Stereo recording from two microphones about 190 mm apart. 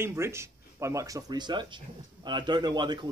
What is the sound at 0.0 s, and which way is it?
Speech, 15° right (ahead or behind).